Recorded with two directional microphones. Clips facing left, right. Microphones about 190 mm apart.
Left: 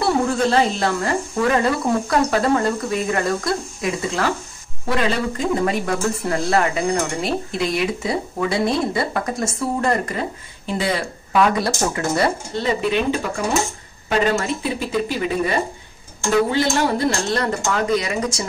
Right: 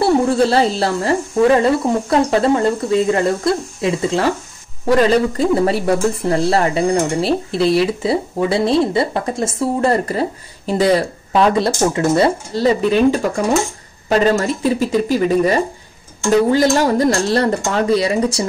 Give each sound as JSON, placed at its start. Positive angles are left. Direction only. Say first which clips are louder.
{"t": 0.0, "sound": "speech", "louder": "right 5 dB", "side_deg": -30}
{"t": 12.5, "sound": "speech", "louder": "right 7 dB", "side_deg": -35}
{"t": 16.5, "sound": "speech", "louder": "right 5 dB", "side_deg": -40}